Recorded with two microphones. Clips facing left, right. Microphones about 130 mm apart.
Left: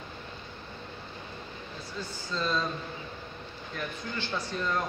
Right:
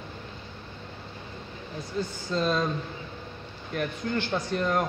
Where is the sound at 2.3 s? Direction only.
55° right (ahead or behind).